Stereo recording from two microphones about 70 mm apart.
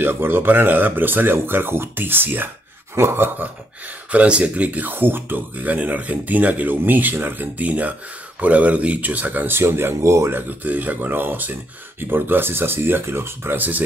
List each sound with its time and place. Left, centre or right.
0.0 s speech: right
4.1 s speech: centre; by 10.3 s right
10.3 s speech: right